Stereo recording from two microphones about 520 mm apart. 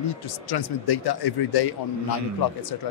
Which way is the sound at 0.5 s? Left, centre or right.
Left.